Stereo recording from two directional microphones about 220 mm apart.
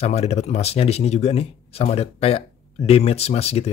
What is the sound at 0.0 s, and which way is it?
Speech, 30° left (ahead or behind).